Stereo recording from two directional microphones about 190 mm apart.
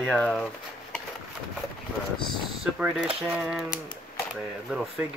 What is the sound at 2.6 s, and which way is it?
Speech, 5° right (ahead or behind).